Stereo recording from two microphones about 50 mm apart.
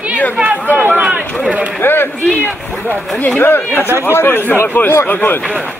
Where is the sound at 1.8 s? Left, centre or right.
Left.